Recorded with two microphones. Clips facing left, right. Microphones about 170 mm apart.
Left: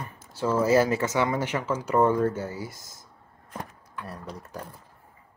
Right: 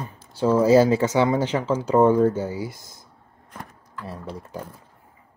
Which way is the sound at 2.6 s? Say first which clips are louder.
Right 6 dB; 25° left (ahead or behind).